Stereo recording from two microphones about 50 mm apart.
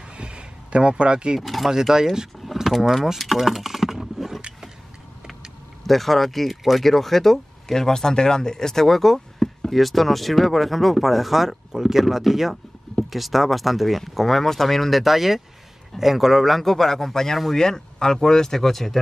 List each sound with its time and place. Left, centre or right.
0.2 s a sound: right
1.4 s speech: centre
1.7 s speech: centre
2.4 s vehicle: centre
5.9 s a man's voice: centre